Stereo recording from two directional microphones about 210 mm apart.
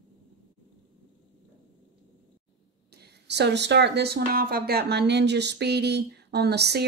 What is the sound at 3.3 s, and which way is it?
Speech, 55° right (ahead or behind).